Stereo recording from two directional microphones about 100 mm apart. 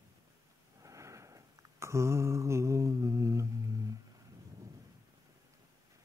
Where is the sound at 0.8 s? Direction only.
30° right (ahead or behind).